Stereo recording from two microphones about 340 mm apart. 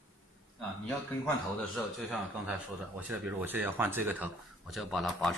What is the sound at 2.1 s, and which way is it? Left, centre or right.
Speech, centre.